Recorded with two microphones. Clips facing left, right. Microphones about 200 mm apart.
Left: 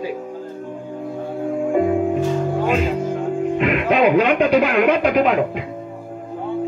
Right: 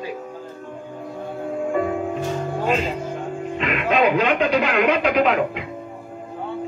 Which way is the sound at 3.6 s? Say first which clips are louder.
Left 2 dB; 55° left (ahead or behind).